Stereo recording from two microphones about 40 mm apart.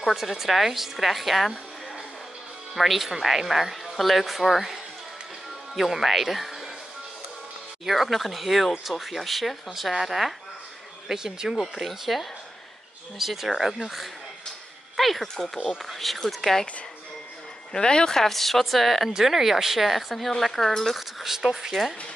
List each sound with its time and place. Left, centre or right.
0.0 s speech: centre
2.7 s speech: centre
5.8 s speech: centre
7.8 s speech: centre
11.6 s speech: centre
15.0 s speech: centre
15.3 s speech: centre
15.8 s speech: centre
17.7 s speech: centre
18.2 s speech: centre
21.2 s speech: centre